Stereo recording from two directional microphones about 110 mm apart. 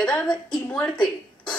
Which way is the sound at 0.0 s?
5° left (ahead or behind).